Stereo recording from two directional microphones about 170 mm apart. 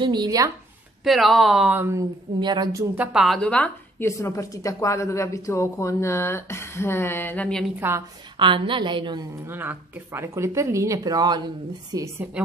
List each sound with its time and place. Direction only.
0.0 s a woman's voice: 25° right (ahead or behind)
1.0 s speech: centre (ahead or behind); by 2.8 s 25° right (ahead or behind)
3.0 s a woman's voice: 5° right (ahead or behind)
4.2 s speech: 20° left (ahead or behind)
7.8 s speech: 15° right (ahead or behind)
8.4 s a woman's voice: 30° right (ahead or behind)
9.5 s speech: 10° right (ahead or behind)